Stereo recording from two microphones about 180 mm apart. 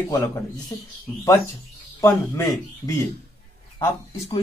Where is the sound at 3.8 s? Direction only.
20° left (ahead or behind).